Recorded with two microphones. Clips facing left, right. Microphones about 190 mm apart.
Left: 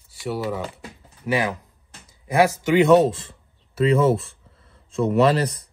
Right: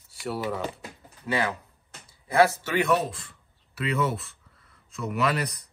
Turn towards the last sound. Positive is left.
turn(degrees=30)  # may be behind; listen again after turning